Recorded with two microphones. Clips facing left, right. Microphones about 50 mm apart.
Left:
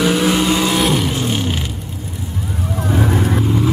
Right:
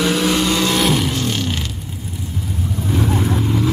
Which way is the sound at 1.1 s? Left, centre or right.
Centre.